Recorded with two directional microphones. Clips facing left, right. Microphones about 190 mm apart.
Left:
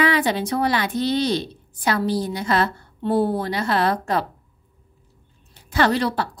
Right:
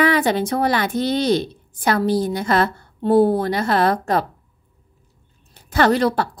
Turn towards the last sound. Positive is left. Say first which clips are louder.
# right 3 dB
turn(degrees=-45)  # may be behind; listen again after turning